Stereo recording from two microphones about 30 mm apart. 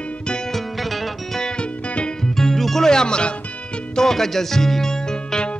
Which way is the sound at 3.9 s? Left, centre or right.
Centre.